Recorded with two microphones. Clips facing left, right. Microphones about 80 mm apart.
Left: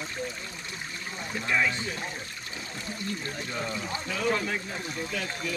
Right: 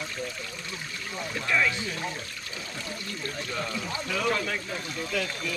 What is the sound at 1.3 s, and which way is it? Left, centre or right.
Speech, centre.